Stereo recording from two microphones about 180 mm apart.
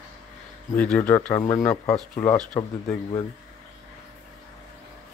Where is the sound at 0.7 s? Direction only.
5° left (ahead or behind).